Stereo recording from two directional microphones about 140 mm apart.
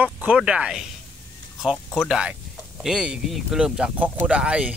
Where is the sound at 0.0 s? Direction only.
10° right (ahead or behind).